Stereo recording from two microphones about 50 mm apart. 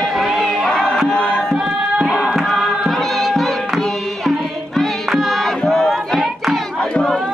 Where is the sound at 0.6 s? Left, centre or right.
Centre.